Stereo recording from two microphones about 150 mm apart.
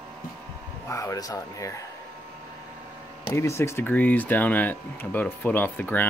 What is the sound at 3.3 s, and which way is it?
Speech, 20° left (ahead or behind).